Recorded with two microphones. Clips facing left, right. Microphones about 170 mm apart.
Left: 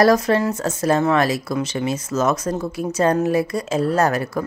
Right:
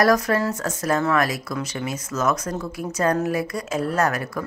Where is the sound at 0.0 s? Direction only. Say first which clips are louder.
Left 3 dB; 25° left (ahead or behind).